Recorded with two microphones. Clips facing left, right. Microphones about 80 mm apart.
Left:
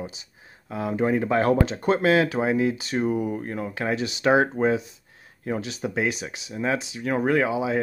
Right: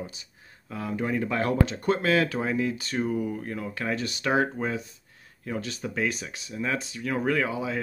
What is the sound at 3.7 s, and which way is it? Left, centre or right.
Speech, centre.